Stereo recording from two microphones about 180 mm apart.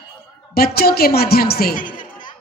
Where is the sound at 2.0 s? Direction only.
45° left (ahead or behind).